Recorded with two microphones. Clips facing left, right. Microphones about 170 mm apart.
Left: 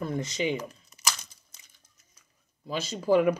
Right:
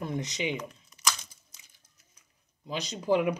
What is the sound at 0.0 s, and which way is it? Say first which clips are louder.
Speech: left 3 dB; 20° right (ahead or behind).